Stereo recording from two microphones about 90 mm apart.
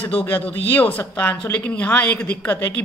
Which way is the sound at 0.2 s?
20° left (ahead or behind).